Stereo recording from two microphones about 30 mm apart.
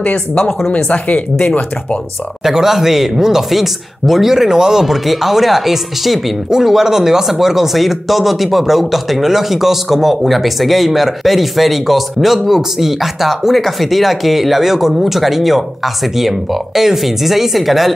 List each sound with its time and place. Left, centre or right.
0.0 s speech: left
2.4 s speech: centre
4.3 s speech: centre
4.8 s speech: centre